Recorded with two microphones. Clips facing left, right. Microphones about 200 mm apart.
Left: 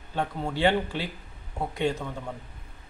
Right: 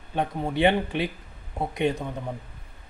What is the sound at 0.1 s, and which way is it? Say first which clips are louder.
Speech: right 3 dB; 15° right (ahead or behind).